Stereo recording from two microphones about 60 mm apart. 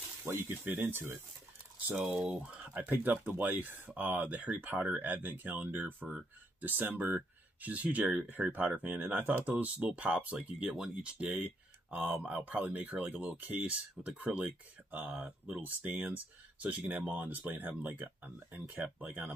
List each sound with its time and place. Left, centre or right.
0.2 s speech: right
2.8 s speech: right